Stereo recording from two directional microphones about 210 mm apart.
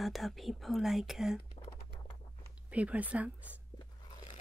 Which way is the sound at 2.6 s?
5° right (ahead or behind).